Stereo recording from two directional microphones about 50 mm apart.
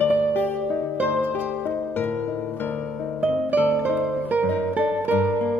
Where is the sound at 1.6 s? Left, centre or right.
Left.